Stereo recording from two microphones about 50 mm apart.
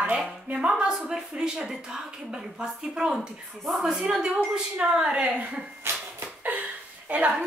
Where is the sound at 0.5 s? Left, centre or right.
Centre.